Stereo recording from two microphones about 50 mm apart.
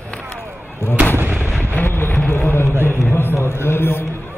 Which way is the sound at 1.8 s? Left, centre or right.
Left.